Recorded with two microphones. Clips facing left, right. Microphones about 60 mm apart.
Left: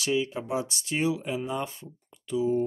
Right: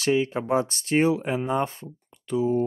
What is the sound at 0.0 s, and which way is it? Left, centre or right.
Speech, right.